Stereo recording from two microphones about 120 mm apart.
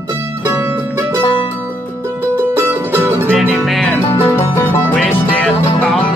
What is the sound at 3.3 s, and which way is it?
Music, centre (ahead or behind).